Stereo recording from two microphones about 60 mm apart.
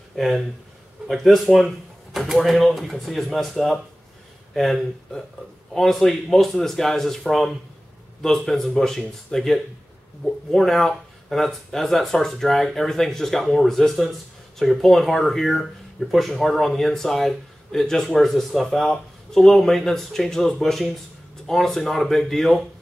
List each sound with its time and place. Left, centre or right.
0.1 s speech: centre